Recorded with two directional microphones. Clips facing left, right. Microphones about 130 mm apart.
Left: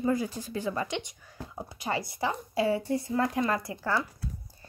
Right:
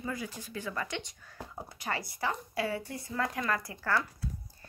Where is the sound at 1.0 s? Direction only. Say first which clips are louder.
Left 4 dB; 15° left (ahead or behind).